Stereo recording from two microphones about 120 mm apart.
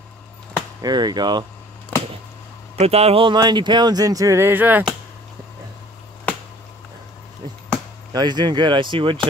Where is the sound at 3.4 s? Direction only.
35° right (ahead or behind); by 4.9 s 15° right (ahead or behind).